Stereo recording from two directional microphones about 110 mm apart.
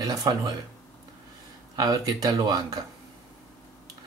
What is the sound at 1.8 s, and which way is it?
Speech, 35° right (ahead or behind).